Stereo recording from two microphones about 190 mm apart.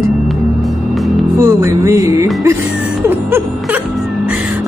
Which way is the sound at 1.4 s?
15° right (ahead or behind).